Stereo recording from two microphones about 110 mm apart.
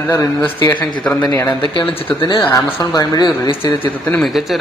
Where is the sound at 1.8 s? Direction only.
50° left (ahead or behind).